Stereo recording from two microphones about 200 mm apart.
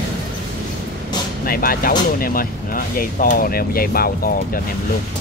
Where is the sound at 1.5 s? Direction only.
45° left (ahead or behind).